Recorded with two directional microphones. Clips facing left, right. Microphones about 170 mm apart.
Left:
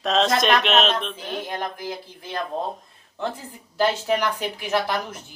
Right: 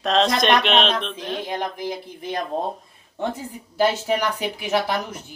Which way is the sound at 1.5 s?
15° right (ahead or behind).